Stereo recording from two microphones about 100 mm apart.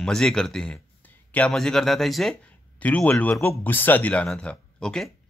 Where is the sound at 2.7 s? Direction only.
15° left (ahead or behind).